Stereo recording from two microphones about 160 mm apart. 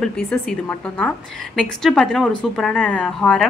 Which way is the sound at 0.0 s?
5° left (ahead or behind).